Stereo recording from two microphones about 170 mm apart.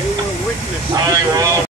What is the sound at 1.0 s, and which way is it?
Speech, 20° right (ahead or behind).